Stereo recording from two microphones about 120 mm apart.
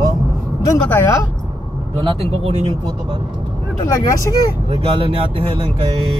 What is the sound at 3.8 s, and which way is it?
Speech, 25° left (ahead or behind).